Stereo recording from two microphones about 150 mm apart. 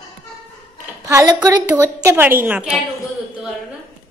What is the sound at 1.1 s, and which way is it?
A woman's voice, 20° right (ahead or behind).